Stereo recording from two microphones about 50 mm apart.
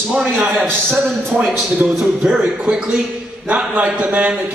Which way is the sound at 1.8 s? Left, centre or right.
Right.